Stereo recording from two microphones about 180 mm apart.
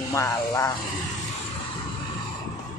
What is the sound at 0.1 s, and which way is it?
Speech, 15° left (ahead or behind).